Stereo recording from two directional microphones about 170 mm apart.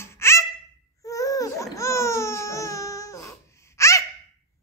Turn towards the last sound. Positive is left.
turn(degrees=15)  # may be behind; listen again after turning